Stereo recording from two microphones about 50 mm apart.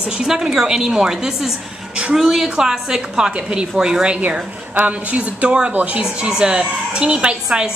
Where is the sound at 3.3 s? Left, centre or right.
Right.